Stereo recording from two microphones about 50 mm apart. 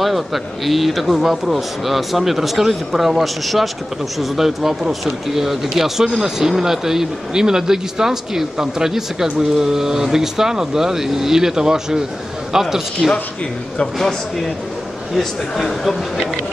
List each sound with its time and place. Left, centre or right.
0.0 s speech: centre